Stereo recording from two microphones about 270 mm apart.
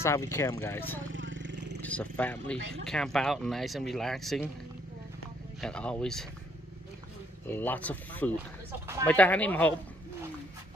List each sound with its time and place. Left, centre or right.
0.0 s speech: centre
1.1 s vehicle: right
1.8 s speech: centre
5.6 s speech: centre
7.4 s speech: centre